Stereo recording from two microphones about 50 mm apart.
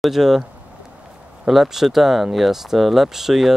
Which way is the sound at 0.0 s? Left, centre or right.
Centre.